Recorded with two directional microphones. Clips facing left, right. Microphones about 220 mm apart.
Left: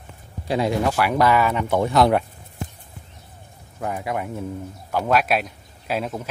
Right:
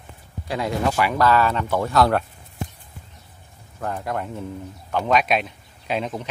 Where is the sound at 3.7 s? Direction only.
10° left (ahead or behind).